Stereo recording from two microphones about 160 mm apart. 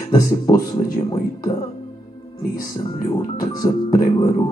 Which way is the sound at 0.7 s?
55° left (ahead or behind).